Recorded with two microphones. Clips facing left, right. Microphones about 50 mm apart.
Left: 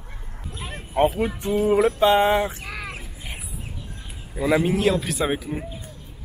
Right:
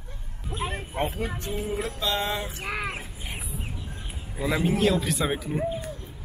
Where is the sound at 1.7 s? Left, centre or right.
Left.